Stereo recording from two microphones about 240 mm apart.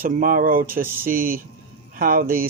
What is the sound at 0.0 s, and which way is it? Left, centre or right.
Speech, right.